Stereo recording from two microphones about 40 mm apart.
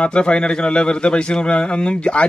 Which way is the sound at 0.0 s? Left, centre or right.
Left.